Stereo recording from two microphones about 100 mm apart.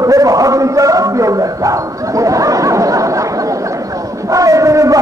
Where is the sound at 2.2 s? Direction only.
35° right (ahead or behind).